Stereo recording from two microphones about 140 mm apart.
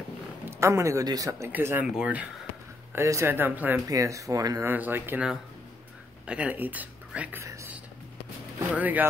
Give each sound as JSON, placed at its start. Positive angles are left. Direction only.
{"t": 0.5, "sound": "speech", "side_deg": -20}
{"t": 1.5, "sound": "speech", "side_deg": -15}
{"t": 2.9, "sound": "speech", "side_deg": -20}
{"t": 3.9, "sound": "speech", "side_deg": -25}
{"t": 4.6, "sound": "speech", "side_deg": -15}
{"t": 8.5, "sound": "speech", "side_deg": -10}